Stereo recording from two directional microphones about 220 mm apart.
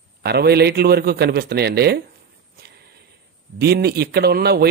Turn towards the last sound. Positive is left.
turn(degrees=-45)  # may be behind; listen again after turning